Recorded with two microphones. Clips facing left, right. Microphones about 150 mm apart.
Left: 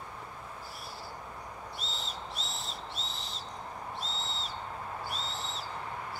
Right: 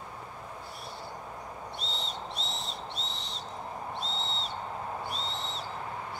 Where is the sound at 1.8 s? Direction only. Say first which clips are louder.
Right 3 dB; centre (ahead or behind).